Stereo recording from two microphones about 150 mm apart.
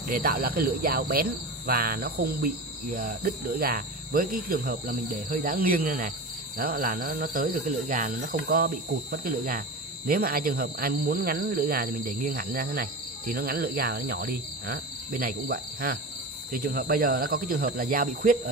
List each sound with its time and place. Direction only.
0.1 s cricket: 80° right
6.6 s speech: 75° right (ahead or behind)
10.0 s cricket: 80° right
13.3 s speech: 85° right; by 18.4 s 70° right (ahead or behind)